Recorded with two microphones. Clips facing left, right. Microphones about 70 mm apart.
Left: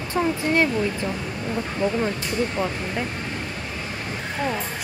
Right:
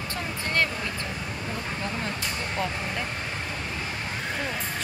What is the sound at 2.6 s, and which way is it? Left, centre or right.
Speech, centre.